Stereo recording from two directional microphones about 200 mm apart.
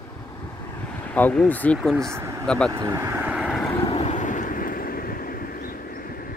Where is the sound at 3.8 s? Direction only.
30° left (ahead or behind).